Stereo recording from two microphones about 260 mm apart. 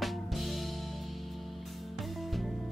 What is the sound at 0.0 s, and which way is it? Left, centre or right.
Music, centre.